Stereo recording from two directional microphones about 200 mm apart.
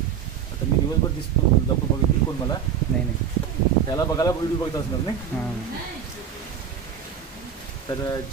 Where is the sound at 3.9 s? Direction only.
20° left (ahead or behind).